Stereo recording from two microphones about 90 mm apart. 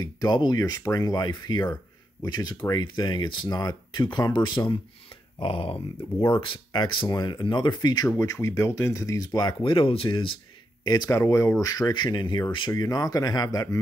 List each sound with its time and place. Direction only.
0.0 s speech: 50° left (ahead or behind)
5.4 s speech: 85° left
6.3 s speech: 70° left (ahead or behind); by 8.1 s 50° left (ahead or behind)
8.1 s speech: 35° left (ahead or behind); by 9.7 s 55° left (ahead or behind)
9.7 s speech: 85° left
10.8 s speech: 50° left (ahead or behind)
11.1 s speech: 35° left (ahead or behind)